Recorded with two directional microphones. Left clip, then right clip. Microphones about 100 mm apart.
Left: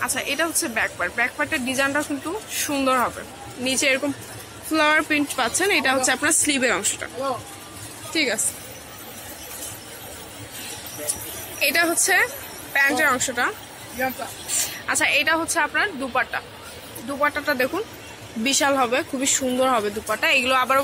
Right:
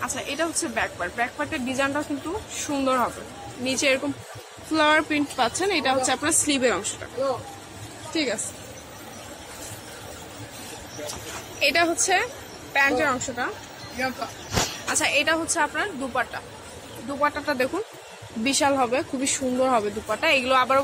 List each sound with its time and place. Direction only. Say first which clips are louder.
0.0 s speech: left 4 dB; 10° left (ahead or behind)
5.6 s speech: left 6 dB; 25° left (ahead or behind)
8.1 s speech: left 4 dB; 15° left (ahead or behind)
11.6 s speech: left 1 dB; 5° left (ahead or behind)
13.1 s speech: left 5 dB; 25° left (ahead or behind)
14.7 s speech: left 6 dB; centre (ahead or behind)